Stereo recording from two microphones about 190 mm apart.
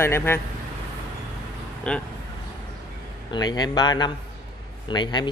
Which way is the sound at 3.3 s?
20° left (ahead or behind).